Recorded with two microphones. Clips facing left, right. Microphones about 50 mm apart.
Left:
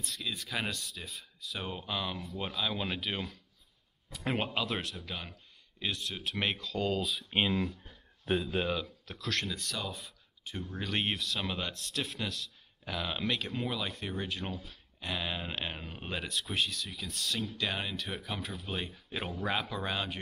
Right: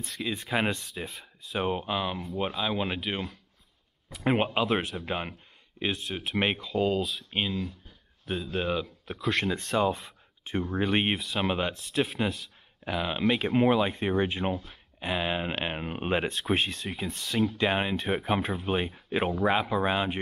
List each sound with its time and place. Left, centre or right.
0.0 s speech: right
4.2 s speech: right
5.8 s speech: right
6.7 s speech: centre
7.5 s speech: left
8.4 s speech: centre
8.6 s speech: centre
9.0 s speech: right
9.5 s speech: right
13.5 s speech: right